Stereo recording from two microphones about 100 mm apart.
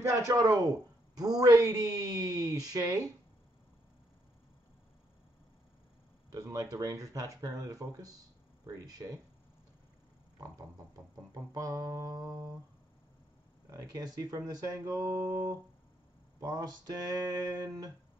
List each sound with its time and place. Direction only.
0.0 s a man's voice: 30° right (ahead or behind)
6.4 s a man's voice: 35° right (ahead or behind)
11.5 s a man's voice: 35° right (ahead or behind)
13.7 s a man's voice: 35° right (ahead or behind)